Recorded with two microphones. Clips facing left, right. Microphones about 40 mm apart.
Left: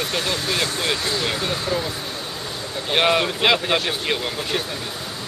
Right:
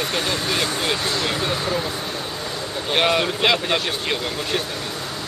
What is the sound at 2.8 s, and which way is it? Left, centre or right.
Speech, centre.